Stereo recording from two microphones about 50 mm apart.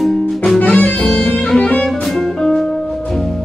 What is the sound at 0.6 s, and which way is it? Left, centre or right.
Music, left.